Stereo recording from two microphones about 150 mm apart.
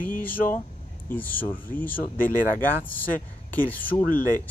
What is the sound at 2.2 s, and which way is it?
Speech, 65° left (ahead or behind).